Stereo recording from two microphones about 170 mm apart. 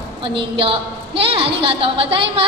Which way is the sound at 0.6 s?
35° right (ahead or behind).